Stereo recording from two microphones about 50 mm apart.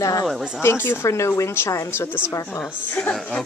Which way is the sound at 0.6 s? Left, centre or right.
Left.